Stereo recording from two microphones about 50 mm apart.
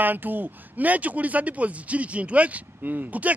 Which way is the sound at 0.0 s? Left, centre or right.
Right.